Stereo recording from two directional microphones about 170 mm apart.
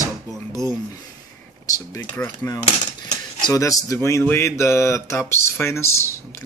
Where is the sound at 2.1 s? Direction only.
10° left (ahead or behind).